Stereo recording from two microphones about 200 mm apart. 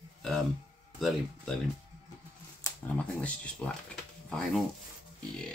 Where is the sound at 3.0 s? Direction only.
5° left (ahead or behind).